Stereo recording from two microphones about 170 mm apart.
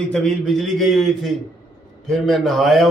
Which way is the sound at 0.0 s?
5° left (ahead or behind).